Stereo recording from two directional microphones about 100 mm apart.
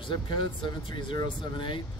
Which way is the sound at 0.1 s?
55° left (ahead or behind).